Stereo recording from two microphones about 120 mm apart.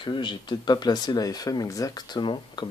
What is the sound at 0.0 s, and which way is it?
Speech, 40° left (ahead or behind).